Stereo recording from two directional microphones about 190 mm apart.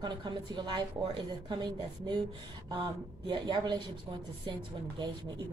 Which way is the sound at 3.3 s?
25° right (ahead or behind).